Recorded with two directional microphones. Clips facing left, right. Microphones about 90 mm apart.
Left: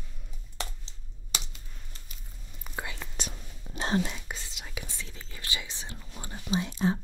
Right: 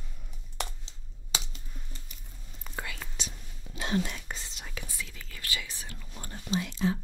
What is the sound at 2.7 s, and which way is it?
Whispering, 10° left (ahead or behind).